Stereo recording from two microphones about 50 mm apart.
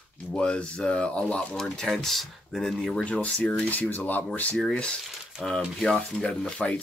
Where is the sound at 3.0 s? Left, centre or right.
Left.